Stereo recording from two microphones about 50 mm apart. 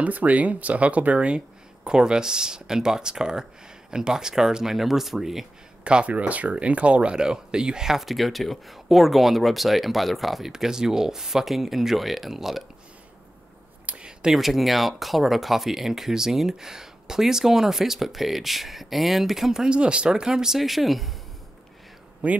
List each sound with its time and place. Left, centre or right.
0.0 s speech: right; by 5.5 s centre
5.9 s speech: right; by 10.5 s centre
10.5 s speech: centre
13.8 s a sound: right
14.3 s speech: centre
19.7 s speech: right; by 21.1 s centre
22.2 s speech: right